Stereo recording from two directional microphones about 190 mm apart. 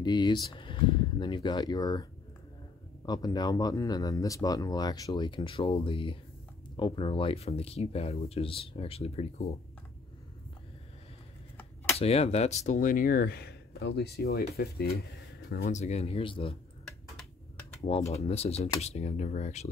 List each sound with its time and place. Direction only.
0.0 s speech: 20° left (ahead or behind)
3.1 s speech: 20° left (ahead or behind)
11.5 s a sound: 5° left (ahead or behind)
12.0 s speech: 35° left (ahead or behind); by 15.8 s 50° left (ahead or behind)
15.8 s speech: 35° left (ahead or behind)
18.1 s speech: 35° left (ahead or behind)